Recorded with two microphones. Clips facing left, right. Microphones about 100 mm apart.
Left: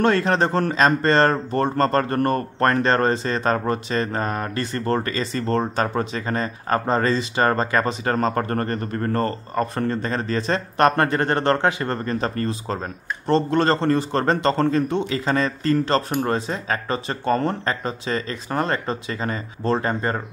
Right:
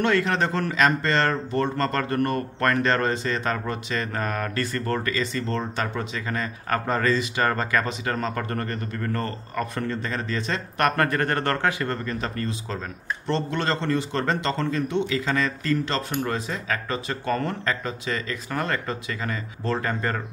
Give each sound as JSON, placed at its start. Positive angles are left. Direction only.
{"t": 0.0, "sound": "speech", "side_deg": 35}